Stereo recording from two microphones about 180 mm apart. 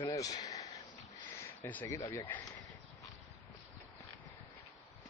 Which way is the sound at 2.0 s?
15° left (ahead or behind).